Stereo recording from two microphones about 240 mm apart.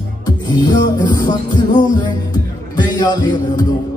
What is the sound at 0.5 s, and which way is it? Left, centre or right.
Music, centre.